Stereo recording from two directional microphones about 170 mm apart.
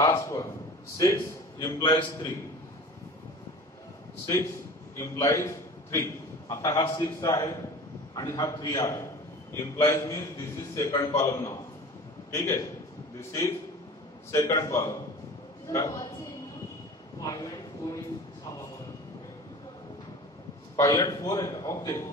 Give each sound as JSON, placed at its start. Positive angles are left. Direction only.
{"t": 0.0, "sound": "a man's voice", "side_deg": 20}
{"t": 1.8, "sound": "a man's voice", "side_deg": 30}
{"t": 4.9, "sound": "a man's voice", "side_deg": 15}
{"t": 14.3, "sound": "a man's voice", "side_deg": 20}
{"t": 17.2, "sound": "speech", "side_deg": 20}
{"t": 20.7, "sound": "a man's voice", "side_deg": 20}